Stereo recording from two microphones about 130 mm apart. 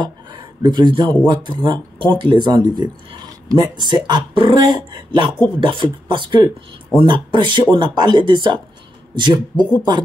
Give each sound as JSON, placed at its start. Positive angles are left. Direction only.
{"t": 0.0, "sound": "speech", "side_deg": -35}